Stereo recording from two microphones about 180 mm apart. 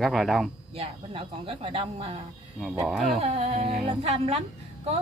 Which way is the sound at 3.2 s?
35° right (ahead or behind).